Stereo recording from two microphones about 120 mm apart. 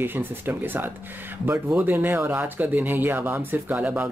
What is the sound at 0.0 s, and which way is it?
Speech, 15° right (ahead or behind).